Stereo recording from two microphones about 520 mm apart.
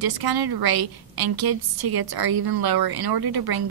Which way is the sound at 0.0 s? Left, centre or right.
Right.